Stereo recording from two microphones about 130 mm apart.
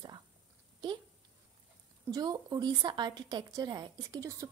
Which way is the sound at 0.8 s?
30° right (ahead or behind).